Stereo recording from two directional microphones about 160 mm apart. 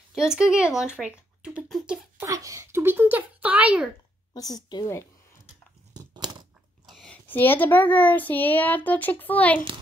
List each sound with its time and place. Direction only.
0.1 s speech: 5° right (ahead or behind)
2.1 s speech: 20° right (ahead or behind)
4.3 s speech: 25° left (ahead or behind)
5.9 s a sound: 25° right (ahead or behind)
6.9 s a child's voice: 5° left (ahead or behind)